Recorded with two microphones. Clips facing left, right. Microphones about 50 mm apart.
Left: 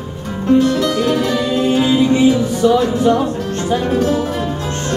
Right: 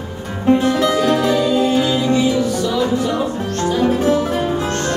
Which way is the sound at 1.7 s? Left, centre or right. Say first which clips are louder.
Left 3 dB; centre.